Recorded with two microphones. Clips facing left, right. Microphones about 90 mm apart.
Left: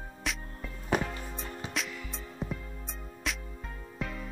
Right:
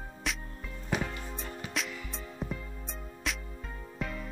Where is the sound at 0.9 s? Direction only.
50° left (ahead or behind).